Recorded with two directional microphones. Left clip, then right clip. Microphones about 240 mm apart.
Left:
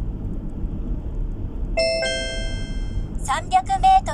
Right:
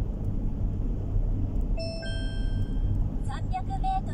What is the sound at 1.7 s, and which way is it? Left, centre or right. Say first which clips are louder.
Music: left 18 dB; left.